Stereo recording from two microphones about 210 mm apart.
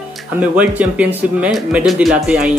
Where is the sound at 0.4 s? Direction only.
5° right (ahead or behind).